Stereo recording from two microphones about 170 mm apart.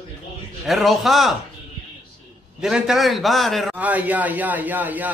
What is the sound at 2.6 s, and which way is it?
A man's voice, 5° right (ahead or behind).